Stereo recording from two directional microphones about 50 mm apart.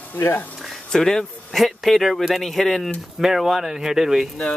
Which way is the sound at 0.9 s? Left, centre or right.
Centre.